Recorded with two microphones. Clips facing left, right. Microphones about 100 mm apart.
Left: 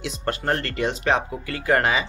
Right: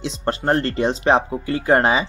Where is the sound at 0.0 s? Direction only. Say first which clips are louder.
Right 4 dB; 30° right (ahead or behind).